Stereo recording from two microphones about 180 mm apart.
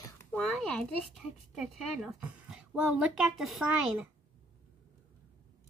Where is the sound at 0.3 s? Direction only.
5° left (ahead or behind).